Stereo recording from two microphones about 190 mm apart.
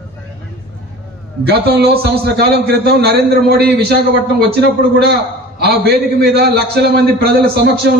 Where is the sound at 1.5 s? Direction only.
55° right (ahead or behind).